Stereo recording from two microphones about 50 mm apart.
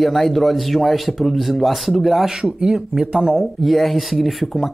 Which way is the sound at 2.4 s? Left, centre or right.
Centre.